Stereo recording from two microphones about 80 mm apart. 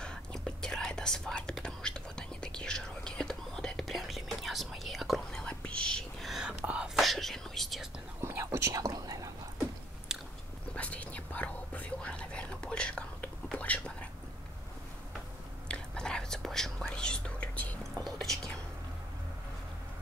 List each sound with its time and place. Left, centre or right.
0.0 s whispering: centre
6.2 s whispering: centre
6.6 s whispering: centre
7.0 s whispering: centre
8.2 s whispering: right
10.1 s biting: centre
10.7 s whispering: centre
15.7 s whispering: centre
18.0 s whispering: centre